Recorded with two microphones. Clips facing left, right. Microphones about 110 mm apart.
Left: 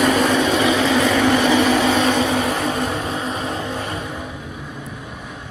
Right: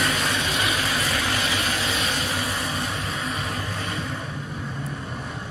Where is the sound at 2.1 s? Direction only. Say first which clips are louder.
Left 10 dB; 65° left (ahead or behind).